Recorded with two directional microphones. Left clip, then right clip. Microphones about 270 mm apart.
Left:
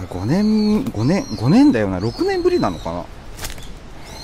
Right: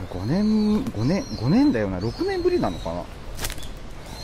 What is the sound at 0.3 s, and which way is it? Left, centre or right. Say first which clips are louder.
Speech: left 5 dB; left.